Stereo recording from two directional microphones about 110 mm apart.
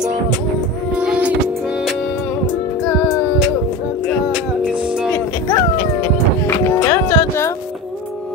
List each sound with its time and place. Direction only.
0.9 s music: 10° right (ahead or behind)
5.1 s music: 20° left (ahead or behind)